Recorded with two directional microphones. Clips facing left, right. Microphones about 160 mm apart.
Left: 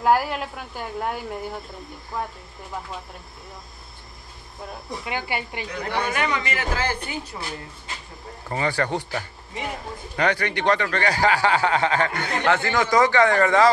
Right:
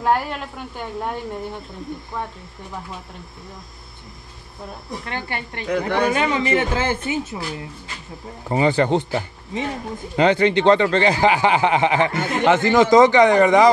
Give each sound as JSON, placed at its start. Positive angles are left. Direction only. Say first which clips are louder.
{"t": 0.0, "sound": "speech", "louder": "left 1 dB", "side_deg": 5}
{"t": 5.0, "sound": "speech", "louder": "left 2 dB", "side_deg": 10}
{"t": 6.1, "sound": "speech", "louder": "right 6 dB", "side_deg": -25}
{"t": 8.5, "sound": "speech", "louder": "right 7 dB", "side_deg": -20}